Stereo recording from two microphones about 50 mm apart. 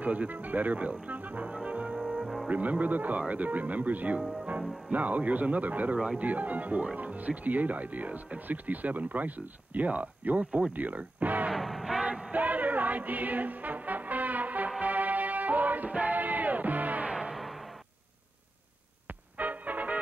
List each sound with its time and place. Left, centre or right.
0.0 s speech: right
2.0 s music: centre
2.5 s speech: right
11.5 s music: centre
12.0 s music: centre
12.3 s music: right
17.3 s music: centre
19.3 s music: right